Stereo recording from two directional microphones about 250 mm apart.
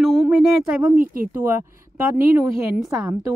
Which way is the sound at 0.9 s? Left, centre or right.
Right.